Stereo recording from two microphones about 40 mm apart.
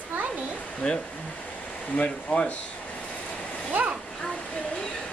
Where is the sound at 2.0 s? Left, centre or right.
Left.